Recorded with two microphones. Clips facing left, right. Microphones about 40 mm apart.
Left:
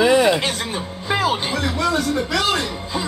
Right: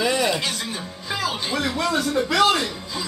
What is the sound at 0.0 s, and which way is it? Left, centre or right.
Music, left.